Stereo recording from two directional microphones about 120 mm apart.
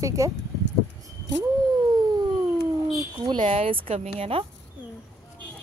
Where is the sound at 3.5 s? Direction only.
50° right (ahead or behind).